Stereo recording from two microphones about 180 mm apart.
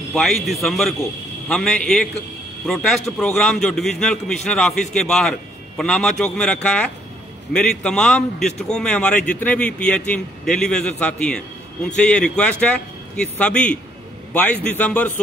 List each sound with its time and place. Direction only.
0.1 s a man's voice: centre (ahead or behind)